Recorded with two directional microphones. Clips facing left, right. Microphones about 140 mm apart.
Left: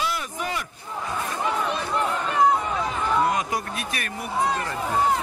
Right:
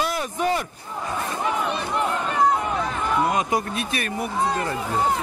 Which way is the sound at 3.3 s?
25° right (ahead or behind).